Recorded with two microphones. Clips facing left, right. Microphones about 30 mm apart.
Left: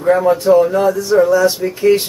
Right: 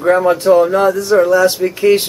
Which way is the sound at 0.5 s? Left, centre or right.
Right.